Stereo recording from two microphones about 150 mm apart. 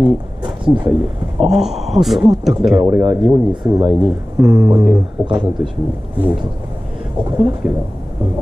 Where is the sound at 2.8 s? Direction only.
15° right (ahead or behind).